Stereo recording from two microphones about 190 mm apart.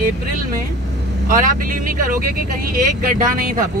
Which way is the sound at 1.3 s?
45° right (ahead or behind).